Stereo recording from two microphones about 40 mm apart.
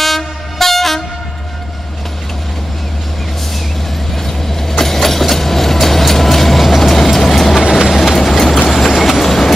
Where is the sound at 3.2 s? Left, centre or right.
Centre.